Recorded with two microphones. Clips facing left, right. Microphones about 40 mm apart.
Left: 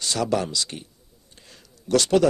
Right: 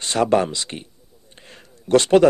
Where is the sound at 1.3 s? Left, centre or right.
Right.